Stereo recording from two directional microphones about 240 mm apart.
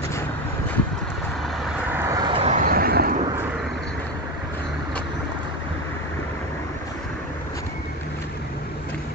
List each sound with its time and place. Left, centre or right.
1.7 s vehicle: centre; by 3.2 s right